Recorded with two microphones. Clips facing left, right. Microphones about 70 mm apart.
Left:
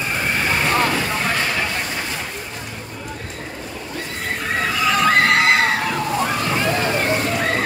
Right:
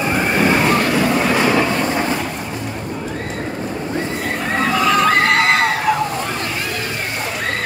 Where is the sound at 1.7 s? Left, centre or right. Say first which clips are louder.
Right 8 dB; right.